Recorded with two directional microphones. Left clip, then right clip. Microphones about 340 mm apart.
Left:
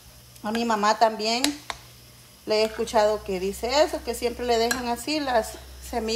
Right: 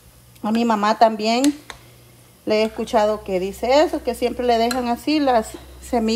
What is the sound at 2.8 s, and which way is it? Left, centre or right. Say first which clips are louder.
A woman's voice: right 3 dB; centre.